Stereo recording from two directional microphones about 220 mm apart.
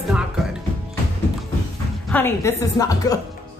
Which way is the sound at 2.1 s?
10° left (ahead or behind).